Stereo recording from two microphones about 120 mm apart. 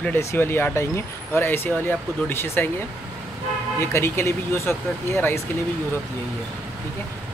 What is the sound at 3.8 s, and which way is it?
Speech, 20° left (ahead or behind).